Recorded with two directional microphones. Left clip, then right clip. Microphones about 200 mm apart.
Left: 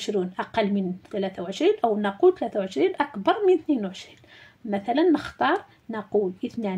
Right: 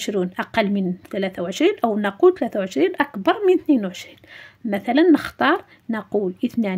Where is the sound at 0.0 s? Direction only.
45° right (ahead or behind).